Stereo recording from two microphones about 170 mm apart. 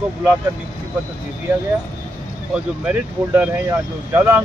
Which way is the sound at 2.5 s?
10° right (ahead or behind).